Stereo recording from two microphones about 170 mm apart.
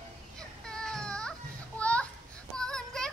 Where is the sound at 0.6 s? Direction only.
5° left (ahead or behind).